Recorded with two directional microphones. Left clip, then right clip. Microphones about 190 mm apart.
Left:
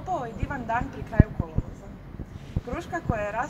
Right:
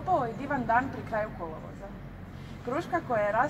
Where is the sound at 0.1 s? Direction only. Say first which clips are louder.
Right 3 dB; 15° left (ahead or behind).